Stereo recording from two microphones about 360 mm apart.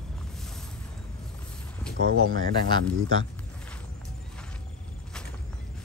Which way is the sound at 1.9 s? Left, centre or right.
Right.